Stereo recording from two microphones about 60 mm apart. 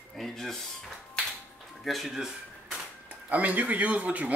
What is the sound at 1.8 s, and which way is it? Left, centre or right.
Speech, centre.